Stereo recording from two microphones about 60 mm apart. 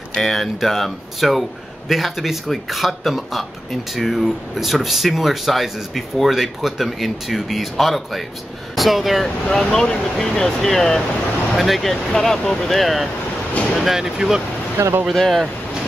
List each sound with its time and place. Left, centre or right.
0.1 s speech: centre
14.8 s speech: right
15.1 s speech: centre